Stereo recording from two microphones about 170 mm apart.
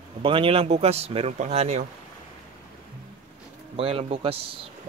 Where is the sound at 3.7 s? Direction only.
35° right (ahead or behind).